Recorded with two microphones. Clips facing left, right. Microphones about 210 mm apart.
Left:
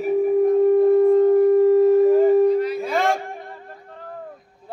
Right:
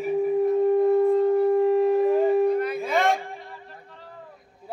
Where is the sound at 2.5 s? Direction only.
55° right (ahead or behind).